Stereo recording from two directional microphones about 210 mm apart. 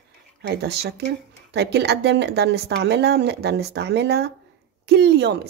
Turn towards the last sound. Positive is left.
turn(degrees=-55)  # may be behind; listen again after turning